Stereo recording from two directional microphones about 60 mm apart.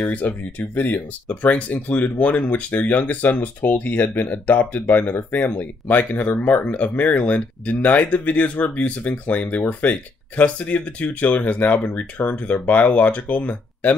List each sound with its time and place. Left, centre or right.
0.0 s speech: left